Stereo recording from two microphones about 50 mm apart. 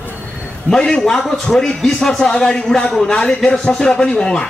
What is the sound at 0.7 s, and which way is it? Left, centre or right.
A man's voice, centre.